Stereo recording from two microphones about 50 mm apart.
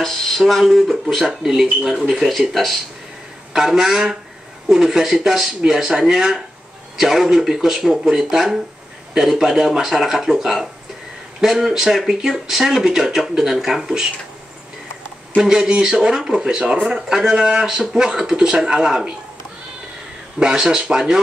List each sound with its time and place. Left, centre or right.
0.0 s speech: centre
3.5 s speech: centre
15.3 s speech: centre
20.3 s speech: centre